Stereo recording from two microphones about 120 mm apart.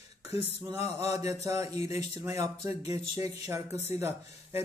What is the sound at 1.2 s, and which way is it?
Speech, 25° right (ahead or behind).